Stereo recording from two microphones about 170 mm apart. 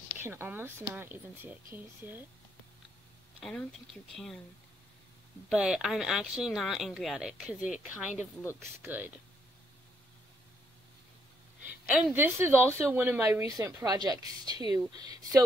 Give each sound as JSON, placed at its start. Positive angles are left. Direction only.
{"t": 0.2, "sound": "a woman's voice", "side_deg": -15}
{"t": 3.3, "sound": "speech", "side_deg": 5}
{"t": 5.5, "sound": "a woman's voice", "side_deg": -5}
{"t": 11.6, "sound": "a woman's voice", "side_deg": -10}